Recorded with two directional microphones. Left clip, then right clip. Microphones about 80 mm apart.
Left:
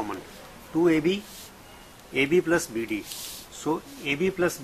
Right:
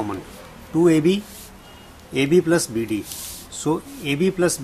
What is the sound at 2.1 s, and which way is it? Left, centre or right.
Speech, right.